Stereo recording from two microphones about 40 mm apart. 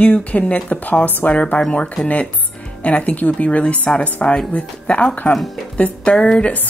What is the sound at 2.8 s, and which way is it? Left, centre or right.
Speech, left.